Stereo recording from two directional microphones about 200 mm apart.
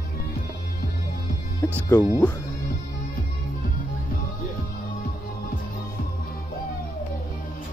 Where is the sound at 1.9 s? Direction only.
15° left (ahead or behind).